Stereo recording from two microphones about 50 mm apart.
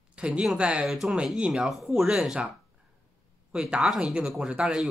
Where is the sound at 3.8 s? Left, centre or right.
Centre.